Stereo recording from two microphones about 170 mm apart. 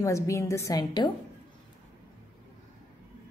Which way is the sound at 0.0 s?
15° left (ahead or behind).